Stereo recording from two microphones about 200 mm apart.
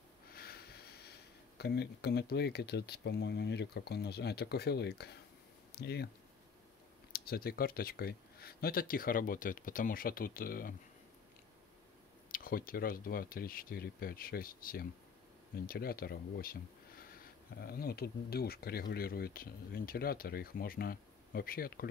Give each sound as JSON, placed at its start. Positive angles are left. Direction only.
{"t": 0.3, "sound": "a sound", "side_deg": 50}
{"t": 1.6, "sound": "speech", "side_deg": 55}
{"t": 7.1, "sound": "speech", "side_deg": 50}
{"t": 12.3, "sound": "speech", "side_deg": 45}